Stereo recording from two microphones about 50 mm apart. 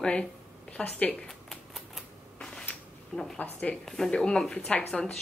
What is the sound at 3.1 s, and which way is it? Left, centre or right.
Speech, centre.